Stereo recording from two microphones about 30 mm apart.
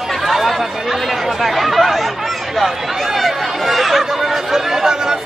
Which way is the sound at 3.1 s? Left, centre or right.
Centre.